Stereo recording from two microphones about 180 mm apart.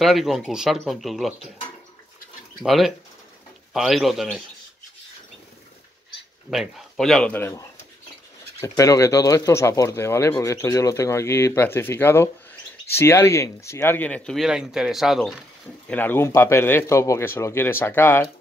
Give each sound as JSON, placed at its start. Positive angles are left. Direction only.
{"t": 0.0, "sound": "speech", "side_deg": 0}
{"t": 2.6, "sound": "speech", "side_deg": 0}
{"t": 6.5, "sound": "speech", "side_deg": 0}
{"t": 15.9, "sound": "speech", "side_deg": 10}